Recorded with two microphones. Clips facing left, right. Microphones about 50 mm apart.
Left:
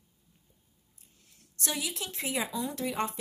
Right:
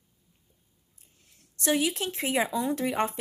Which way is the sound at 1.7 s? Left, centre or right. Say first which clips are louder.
Right 9 dB; right.